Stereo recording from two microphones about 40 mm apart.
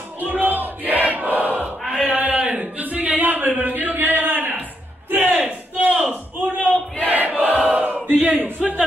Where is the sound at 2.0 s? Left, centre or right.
Right.